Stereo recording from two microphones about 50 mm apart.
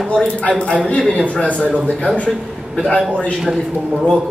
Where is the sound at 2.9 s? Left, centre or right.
Left.